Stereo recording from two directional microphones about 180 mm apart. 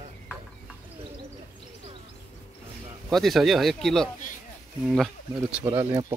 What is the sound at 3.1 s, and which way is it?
Speech, centre (ahead or behind).